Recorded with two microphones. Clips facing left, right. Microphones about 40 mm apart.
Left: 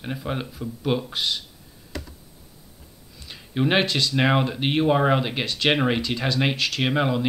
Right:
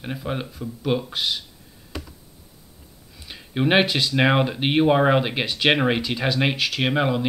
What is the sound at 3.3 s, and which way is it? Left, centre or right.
Speech, centre.